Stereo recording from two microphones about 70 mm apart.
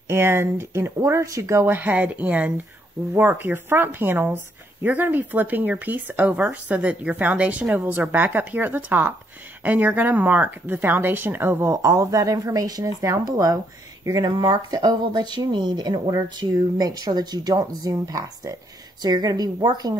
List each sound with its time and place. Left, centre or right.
0.1 s speech: right
1.7 s speech: right
11.7 s speech: right
13.2 s speech: right
16.3 s speech: right
19.0 s speech: right